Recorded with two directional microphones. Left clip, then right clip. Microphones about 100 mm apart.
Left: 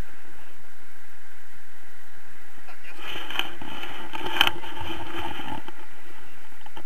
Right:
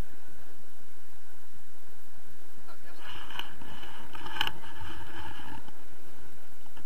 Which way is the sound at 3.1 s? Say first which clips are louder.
Left 11 dB; 50° right (ahead or behind).